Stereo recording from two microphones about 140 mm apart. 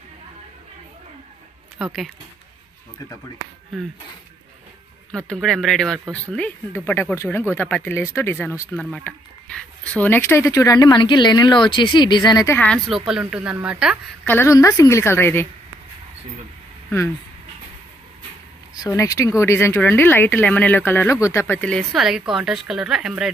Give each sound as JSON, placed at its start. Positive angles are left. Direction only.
{"t": 1.8, "sound": "speech", "side_deg": -5}
{"t": 5.1, "sound": "speech", "side_deg": 5}
{"t": 8.9, "sound": "speech", "side_deg": 5}
{"t": 12.5, "sound": "speech", "side_deg": 5}
{"t": 14.2, "sound": "speech", "side_deg": 15}
{"t": 18.9, "sound": "speech", "side_deg": 20}